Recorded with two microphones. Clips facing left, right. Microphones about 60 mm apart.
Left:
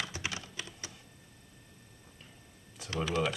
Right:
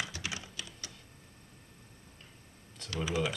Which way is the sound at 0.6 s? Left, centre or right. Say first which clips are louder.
Left 2 dB; left.